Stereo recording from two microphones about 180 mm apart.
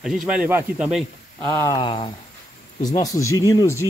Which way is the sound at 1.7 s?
30° left (ahead or behind).